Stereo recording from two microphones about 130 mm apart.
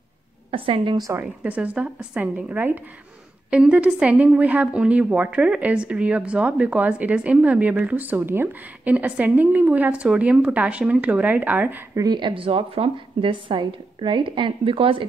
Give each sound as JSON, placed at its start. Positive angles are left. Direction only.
{"t": 0.5, "sound": "a woman's voice", "side_deg": -45}
{"t": 1.2, "sound": "a woman's voice", "side_deg": -10}
{"t": 11.9, "sound": "speech", "side_deg": -30}